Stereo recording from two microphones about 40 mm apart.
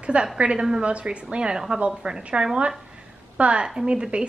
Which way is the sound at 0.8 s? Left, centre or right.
Right.